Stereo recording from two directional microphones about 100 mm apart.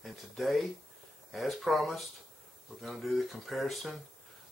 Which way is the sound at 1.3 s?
Centre (ahead or behind).